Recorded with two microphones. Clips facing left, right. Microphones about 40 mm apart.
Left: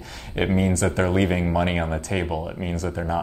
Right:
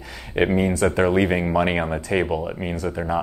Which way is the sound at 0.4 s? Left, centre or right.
Centre.